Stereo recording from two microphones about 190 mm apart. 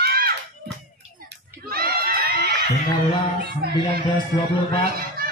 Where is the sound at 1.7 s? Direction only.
50° right (ahead or behind).